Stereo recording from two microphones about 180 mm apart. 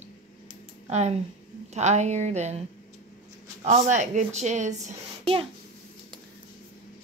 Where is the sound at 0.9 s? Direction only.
40° right (ahead or behind).